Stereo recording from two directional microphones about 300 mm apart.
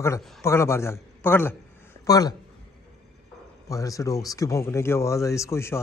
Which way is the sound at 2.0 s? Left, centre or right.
Centre.